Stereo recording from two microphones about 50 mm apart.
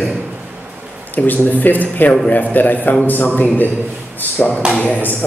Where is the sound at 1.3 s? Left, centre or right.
Left.